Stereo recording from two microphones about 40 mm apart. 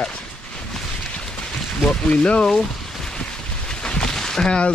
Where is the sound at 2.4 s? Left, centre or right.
Centre.